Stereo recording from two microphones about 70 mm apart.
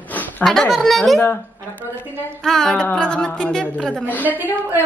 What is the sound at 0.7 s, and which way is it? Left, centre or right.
Speech, centre.